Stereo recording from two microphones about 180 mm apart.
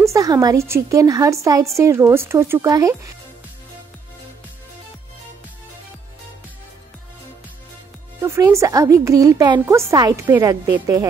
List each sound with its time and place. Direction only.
0.0 s a woman's voice: 20° right (ahead or behind)
8.2 s a woman's voice: 15° right (ahead or behind)